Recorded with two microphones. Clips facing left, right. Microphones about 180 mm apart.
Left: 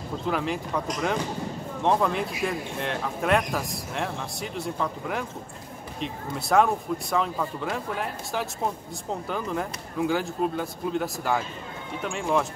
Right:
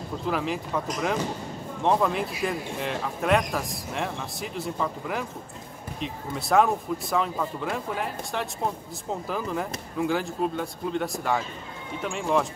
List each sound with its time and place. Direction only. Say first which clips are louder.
0.3 s speech: even; centre (ahead or behind)